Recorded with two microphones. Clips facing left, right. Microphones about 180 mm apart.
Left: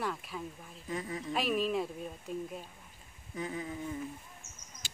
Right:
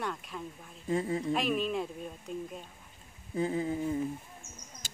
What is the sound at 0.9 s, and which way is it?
Speech, 30° right (ahead or behind).